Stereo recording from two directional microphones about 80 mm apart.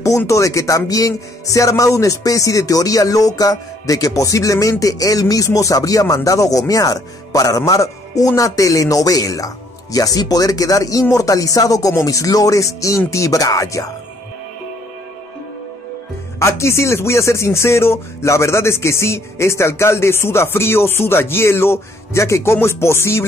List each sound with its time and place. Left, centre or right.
0.3 s a man's voice: left
16.3 s speech: left